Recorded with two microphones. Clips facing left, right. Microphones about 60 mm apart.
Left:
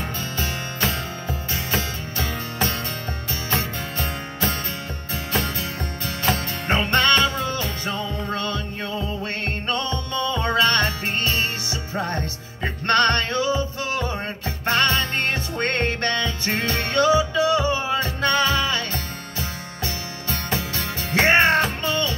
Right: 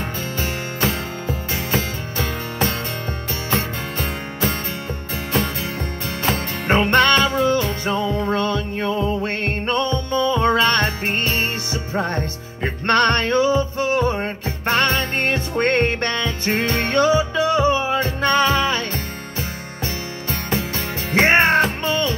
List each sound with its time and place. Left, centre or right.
0.4 s music: right